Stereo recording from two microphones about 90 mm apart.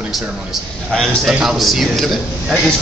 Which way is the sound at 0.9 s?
5° left (ahead or behind).